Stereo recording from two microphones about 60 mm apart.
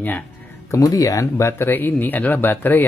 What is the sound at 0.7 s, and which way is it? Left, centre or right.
Speech, left.